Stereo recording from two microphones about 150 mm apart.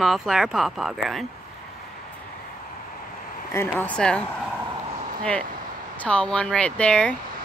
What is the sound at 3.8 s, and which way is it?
Speech, 10° left (ahead or behind).